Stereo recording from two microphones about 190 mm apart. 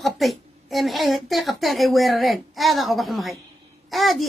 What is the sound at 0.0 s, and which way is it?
A woman's voice, centre (ahead or behind).